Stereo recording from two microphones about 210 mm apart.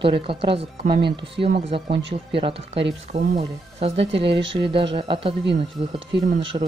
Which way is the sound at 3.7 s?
30° right (ahead or behind).